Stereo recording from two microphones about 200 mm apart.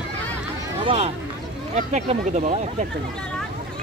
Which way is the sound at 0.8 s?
25° right (ahead or behind).